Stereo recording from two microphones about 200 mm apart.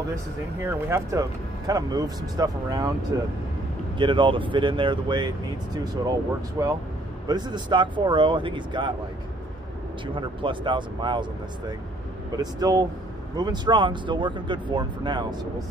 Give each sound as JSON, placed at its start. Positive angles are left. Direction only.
{"t": 0.6, "sound": "speech", "side_deg": -10}
{"t": 6.6, "sound": "speech", "side_deg": -15}
{"t": 10.1, "sound": "speech", "side_deg": -25}
{"t": 12.4, "sound": "speech", "side_deg": -20}